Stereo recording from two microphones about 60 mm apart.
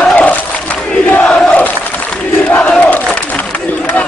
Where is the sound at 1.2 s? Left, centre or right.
Centre.